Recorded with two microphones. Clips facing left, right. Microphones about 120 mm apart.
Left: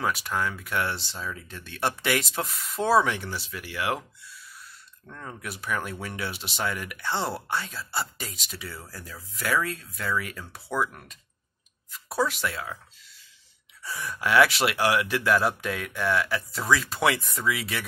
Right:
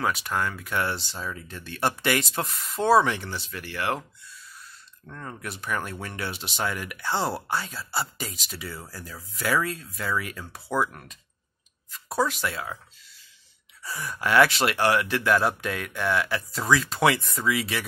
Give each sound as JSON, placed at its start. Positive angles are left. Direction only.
{"t": 0.0, "sound": "speech", "side_deg": 0}
{"t": 5.0, "sound": "speech", "side_deg": 0}
{"t": 13.8, "sound": "speech", "side_deg": 0}